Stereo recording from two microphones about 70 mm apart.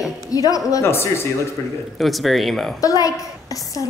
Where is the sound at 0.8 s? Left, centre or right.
Left.